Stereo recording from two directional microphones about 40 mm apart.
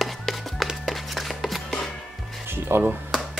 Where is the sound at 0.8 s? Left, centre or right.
Centre.